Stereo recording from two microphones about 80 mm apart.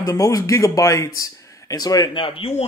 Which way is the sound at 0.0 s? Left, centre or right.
Left.